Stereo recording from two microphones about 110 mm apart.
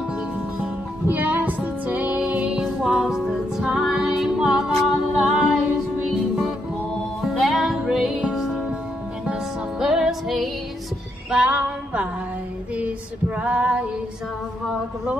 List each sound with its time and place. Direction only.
0.6 s music: 15° right (ahead or behind)
13.4 s female singing: 10° right (ahead or behind)